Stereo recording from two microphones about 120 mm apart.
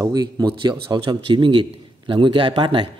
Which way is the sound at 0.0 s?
35° right (ahead or behind).